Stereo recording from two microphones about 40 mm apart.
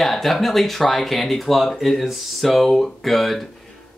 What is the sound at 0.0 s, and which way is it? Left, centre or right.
Speech, centre.